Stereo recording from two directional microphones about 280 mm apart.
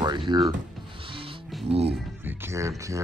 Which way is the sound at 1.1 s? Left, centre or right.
Centre.